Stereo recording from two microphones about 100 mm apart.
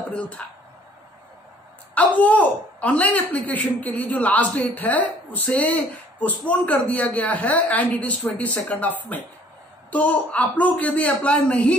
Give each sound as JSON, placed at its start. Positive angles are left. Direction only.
{"t": 0.4, "sound": "a man's voice", "side_deg": 10}
{"t": 2.0, "sound": "a man's voice", "side_deg": 15}